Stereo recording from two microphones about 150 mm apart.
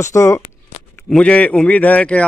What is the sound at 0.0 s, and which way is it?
Speech, 20° left (ahead or behind).